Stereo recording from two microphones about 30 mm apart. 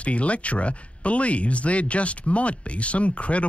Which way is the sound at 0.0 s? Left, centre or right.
Left.